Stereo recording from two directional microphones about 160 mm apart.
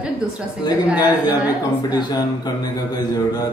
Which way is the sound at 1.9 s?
25° left (ahead or behind).